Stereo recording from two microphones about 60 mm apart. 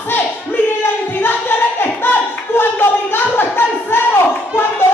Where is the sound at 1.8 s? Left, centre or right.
Left.